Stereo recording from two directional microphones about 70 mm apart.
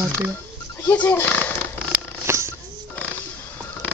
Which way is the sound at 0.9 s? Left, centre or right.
Left.